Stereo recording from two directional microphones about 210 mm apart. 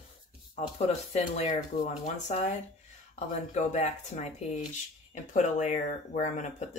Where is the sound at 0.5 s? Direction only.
30° left (ahead or behind).